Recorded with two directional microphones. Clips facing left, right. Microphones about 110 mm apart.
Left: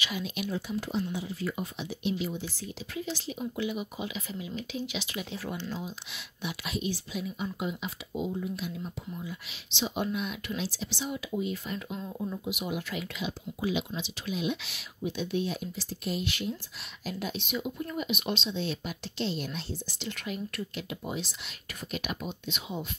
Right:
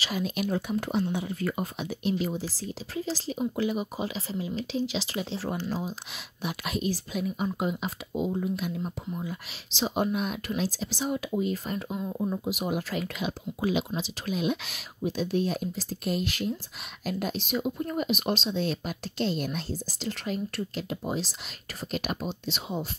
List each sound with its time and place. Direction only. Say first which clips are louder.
0.0 s speech: right 4 dB; 45° right (ahead or behind)
11.9 s speech: right 5 dB; 15° right (ahead or behind)
12.3 s speech: right 3 dB; 40° right (ahead or behind)